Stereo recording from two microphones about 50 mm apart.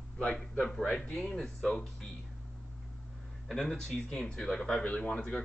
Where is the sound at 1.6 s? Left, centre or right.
Left.